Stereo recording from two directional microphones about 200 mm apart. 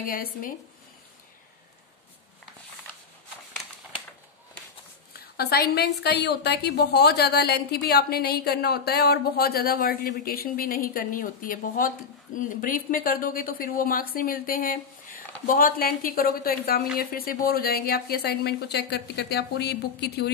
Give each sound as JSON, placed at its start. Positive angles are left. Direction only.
{"t": 0.0, "sound": "a woman's voice", "side_deg": 45}
{"t": 5.1, "sound": "a woman's voice", "side_deg": 50}